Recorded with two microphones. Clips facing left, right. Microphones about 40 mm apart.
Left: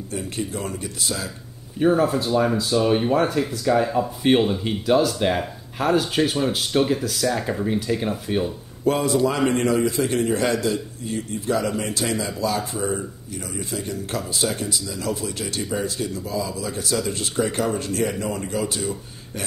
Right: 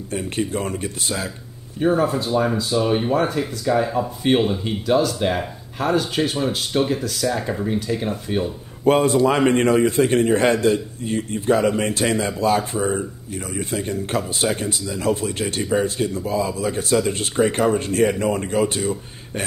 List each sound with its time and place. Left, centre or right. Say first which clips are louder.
0.1 s a man's voice: right 5 dB; right
1.8 s speech: even; centre
8.8 s a man's voice: right 4 dB; right